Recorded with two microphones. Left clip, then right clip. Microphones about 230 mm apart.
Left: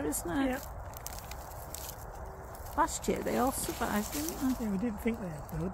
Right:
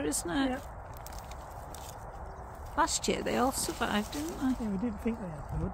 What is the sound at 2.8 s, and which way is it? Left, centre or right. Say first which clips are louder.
Speech: right 1 dB; centre.